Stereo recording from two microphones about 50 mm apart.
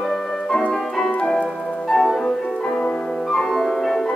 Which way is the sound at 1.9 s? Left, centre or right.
Centre.